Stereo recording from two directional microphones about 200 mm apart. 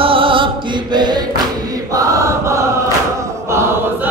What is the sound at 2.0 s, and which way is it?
Chant, 15° right (ahead or behind).